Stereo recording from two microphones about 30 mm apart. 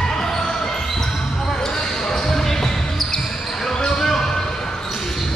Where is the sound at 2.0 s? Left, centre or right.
Centre.